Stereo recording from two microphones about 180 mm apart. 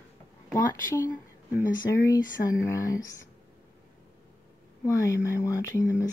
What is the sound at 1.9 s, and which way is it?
Speech, 15° left (ahead or behind).